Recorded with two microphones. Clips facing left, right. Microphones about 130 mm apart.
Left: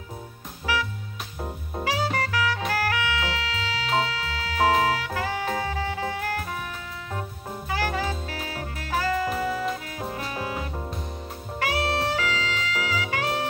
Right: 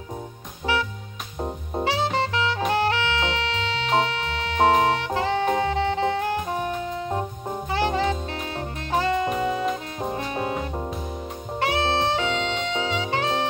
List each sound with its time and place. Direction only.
0.7 s music: 25° right (ahead or behind)
6.6 s music: 35° right (ahead or behind)
7.4 s music: 25° right (ahead or behind)
11.6 s saxophone: 25° right (ahead or behind)